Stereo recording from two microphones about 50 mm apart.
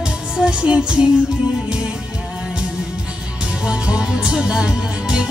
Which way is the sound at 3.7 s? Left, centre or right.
Centre.